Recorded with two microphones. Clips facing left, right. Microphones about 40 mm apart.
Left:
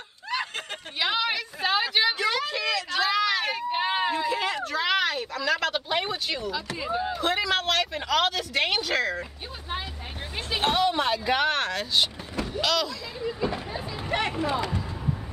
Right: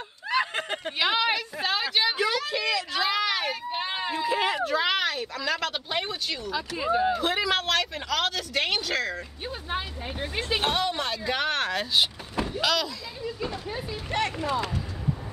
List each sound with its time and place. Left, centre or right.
0.3 s snicker: centre
0.9 s a sound: centre
1.7 s a sound: centre
3.4 s run: centre
4.3 s a sound: centre
6.8 s speech: centre
7.1 s speech: centre
10.6 s speech: centre
14.1 s speech: centre